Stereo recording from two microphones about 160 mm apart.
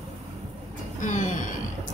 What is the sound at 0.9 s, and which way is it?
Train, 50° left (ahead or behind).